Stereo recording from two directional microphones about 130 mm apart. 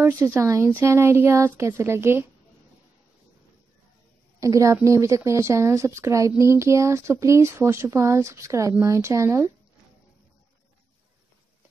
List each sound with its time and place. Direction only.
0.0 s speech: 20° right (ahead or behind)
4.4 s speech: 25° right (ahead or behind)